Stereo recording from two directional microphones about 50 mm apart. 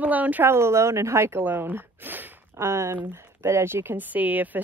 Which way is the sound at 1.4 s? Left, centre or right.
Right.